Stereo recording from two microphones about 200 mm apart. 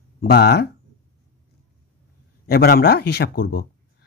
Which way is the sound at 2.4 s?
50° left (ahead or behind).